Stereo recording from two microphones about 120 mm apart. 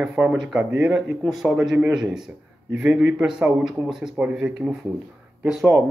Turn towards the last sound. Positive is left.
turn(degrees=-5)  # may be behind; listen again after turning